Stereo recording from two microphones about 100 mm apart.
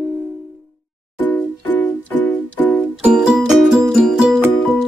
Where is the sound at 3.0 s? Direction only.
10° right (ahead or behind).